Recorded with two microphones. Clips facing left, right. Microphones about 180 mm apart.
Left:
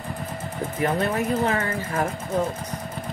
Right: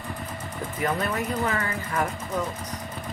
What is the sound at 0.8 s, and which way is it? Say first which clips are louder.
Speech: left 4 dB; 30° left (ahead or behind).